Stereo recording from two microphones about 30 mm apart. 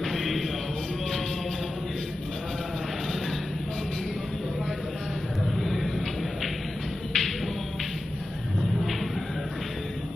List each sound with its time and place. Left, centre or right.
0.0 s music: centre
5.6 s a sound: centre
7.1 s music: centre